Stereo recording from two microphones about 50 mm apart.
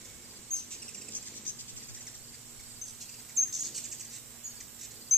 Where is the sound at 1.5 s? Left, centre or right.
Left.